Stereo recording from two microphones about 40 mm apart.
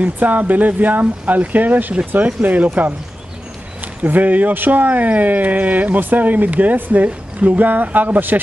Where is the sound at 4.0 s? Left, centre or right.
Right.